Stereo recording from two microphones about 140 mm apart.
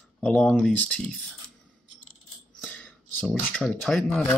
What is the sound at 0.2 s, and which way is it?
Speech, 5° left (ahead or behind).